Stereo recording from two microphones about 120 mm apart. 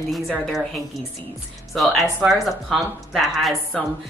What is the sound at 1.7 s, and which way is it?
Speech, centre (ahead or behind).